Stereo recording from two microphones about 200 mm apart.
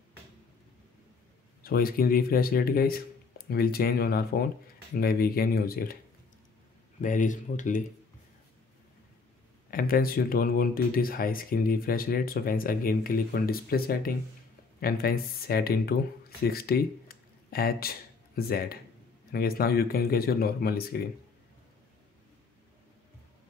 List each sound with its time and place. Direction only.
1.6 s speech: 45° left (ahead or behind)
7.0 s speech: 40° left (ahead or behind)
9.7 s speech: 45° left (ahead or behind)